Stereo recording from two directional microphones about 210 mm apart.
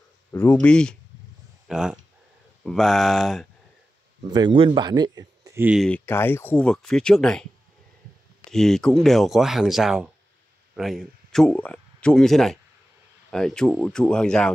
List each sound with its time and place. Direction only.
0.3 s speech: 10° left (ahead or behind)
4.2 s speech: 20° right (ahead or behind)
5.8 s speech: 5° left (ahead or behind)
8.5 s speech: centre (ahead or behind)